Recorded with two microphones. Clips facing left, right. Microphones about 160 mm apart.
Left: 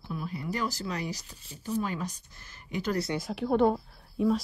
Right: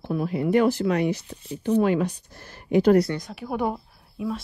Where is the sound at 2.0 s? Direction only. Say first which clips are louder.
Right 11 dB; 55° right (ahead or behind).